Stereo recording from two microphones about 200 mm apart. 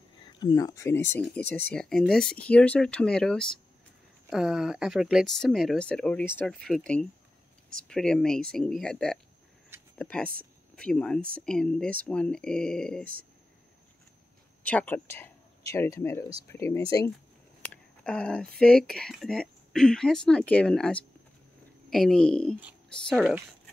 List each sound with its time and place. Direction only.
0.4 s speech: 20° left (ahead or behind); by 13.0 s 5° left (ahead or behind)
13.0 s speech: 45° right (ahead or behind)
14.6 s speech: 5° left (ahead or behind)
18.0 s speech: 5° left (ahead or behind)